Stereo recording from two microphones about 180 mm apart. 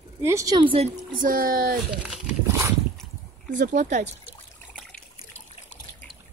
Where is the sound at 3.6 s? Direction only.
40° right (ahead or behind).